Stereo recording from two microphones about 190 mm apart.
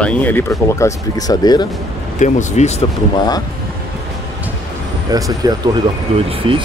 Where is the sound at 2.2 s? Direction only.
40° left (ahead or behind).